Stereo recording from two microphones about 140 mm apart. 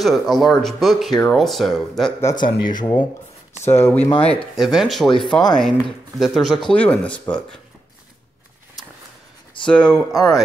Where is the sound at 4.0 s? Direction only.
45° left (ahead or behind).